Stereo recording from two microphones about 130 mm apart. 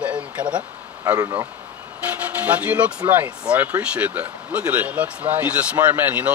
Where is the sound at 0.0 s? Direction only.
10° right (ahead or behind).